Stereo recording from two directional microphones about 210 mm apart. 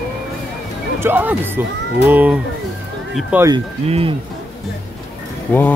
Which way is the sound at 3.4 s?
25° right (ahead or behind).